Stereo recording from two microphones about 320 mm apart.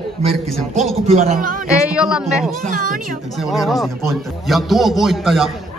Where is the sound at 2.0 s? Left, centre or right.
Centre.